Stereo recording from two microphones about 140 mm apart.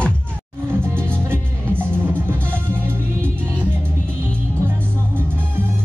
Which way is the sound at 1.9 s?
15° right (ahead or behind).